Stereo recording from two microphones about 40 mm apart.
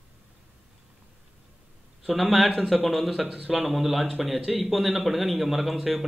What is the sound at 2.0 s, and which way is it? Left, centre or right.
A man's voice, centre.